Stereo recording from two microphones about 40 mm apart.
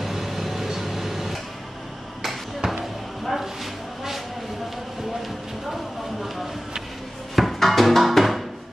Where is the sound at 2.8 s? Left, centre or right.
Centre.